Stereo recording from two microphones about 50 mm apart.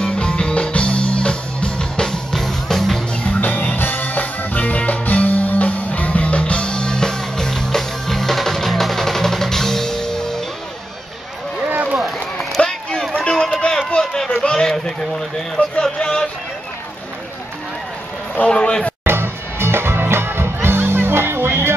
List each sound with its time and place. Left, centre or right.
0.0 s music: left; by 3.0 s centre
3.3 s music: left; by 10.4 s centre
12.5 s run: centre
13.3 s a sound: centre
15.8 s music: centre
18.5 s a sound: centre
19.0 s music: right